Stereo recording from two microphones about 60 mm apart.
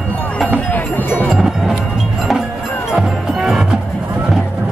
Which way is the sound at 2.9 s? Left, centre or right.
Centre.